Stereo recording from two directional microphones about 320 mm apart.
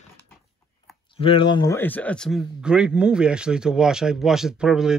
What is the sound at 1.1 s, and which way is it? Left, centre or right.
A man's voice, centre.